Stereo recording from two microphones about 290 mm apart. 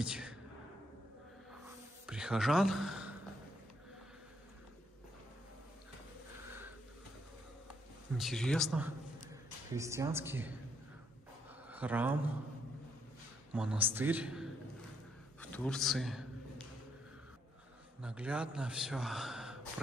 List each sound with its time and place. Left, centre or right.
0.0 s a sound: centre
2.0 s speech: centre
8.2 s a man's voice: centre
11.7 s speech: centre
13.5 s a man's voice: centre
15.5 s a sound: centre
18.0 s a man's voice: centre